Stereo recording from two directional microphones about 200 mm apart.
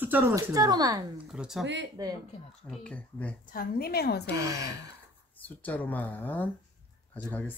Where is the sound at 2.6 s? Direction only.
5° left (ahead or behind).